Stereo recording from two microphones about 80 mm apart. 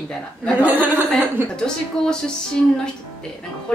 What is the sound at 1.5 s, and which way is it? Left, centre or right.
A woman's voice, centre.